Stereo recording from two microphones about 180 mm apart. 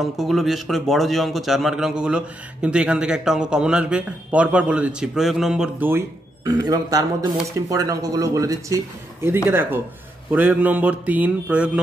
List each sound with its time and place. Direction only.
0.0 s a man's voice: centre (ahead or behind)
9.5 s mantra: 10° right (ahead or behind)